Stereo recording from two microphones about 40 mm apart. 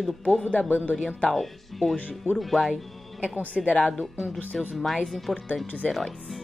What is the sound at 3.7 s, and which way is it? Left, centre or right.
Speech, left.